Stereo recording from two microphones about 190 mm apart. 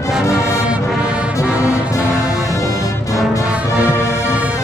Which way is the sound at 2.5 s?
15° left (ahead or behind).